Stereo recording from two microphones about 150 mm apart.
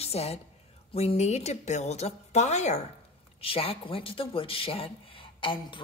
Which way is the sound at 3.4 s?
40° left (ahead or behind).